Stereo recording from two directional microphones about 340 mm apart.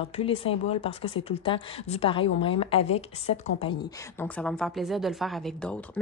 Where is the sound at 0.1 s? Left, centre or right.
Centre.